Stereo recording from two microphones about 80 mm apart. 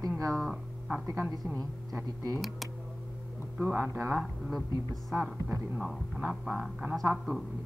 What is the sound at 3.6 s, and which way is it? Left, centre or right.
Speech, right.